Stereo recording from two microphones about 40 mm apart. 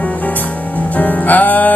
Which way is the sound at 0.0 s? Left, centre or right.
Left.